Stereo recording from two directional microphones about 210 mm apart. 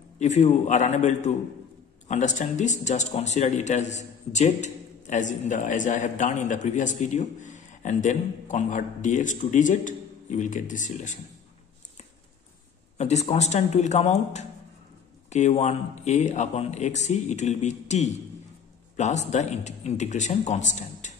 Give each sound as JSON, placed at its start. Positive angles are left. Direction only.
{"t": 0.2, "sound": "speech", "side_deg": 35}
{"t": 12.9, "sound": "speech", "side_deg": 30}